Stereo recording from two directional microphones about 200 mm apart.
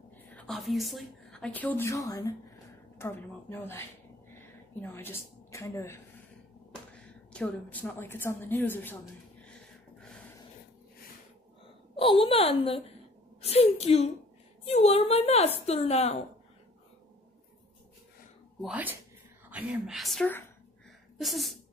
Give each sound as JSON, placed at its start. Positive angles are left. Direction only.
{"t": 0.3, "sound": "a woman's voice", "side_deg": 5}
{"t": 7.3, "sound": "a woman's voice", "side_deg": 5}
{"t": 9.4, "sound": "a sound", "side_deg": 5}
{"t": 12.0, "sound": "a woman's voice", "side_deg": 25}
{"t": 18.6, "sound": "a woman's voice", "side_deg": -5}